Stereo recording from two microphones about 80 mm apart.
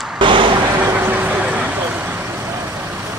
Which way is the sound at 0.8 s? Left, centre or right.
Right.